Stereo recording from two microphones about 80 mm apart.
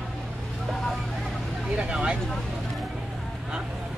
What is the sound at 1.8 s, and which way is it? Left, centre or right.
Vehicle, centre.